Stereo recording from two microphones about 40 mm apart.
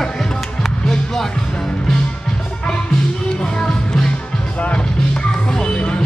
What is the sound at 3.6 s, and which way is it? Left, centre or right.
Music, centre.